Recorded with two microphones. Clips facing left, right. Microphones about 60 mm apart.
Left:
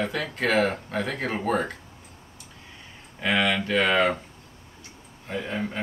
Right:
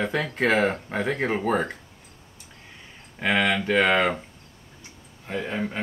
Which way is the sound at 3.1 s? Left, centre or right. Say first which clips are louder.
Right 1 dB; right.